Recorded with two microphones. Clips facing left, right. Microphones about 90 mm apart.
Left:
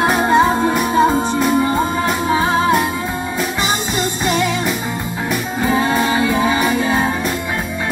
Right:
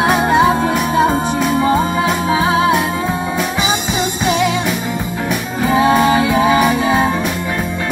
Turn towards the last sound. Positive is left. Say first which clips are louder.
# right 3 dB
turn(degrees=-15)  # may be behind; listen again after turning